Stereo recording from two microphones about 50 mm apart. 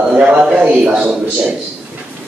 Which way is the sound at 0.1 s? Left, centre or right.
Right.